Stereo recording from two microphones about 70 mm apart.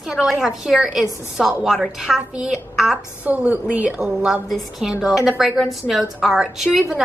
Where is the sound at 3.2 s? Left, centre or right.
Right.